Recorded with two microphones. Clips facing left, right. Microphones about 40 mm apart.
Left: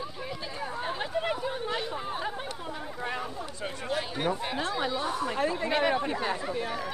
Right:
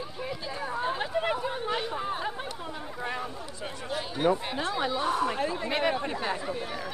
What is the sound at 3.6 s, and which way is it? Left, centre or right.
Speech, left.